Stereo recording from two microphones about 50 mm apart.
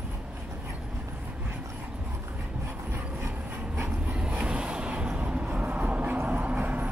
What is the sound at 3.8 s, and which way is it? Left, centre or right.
Vehicle, right.